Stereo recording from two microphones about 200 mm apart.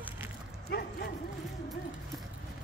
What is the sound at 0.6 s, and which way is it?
Dog, 50° left (ahead or behind).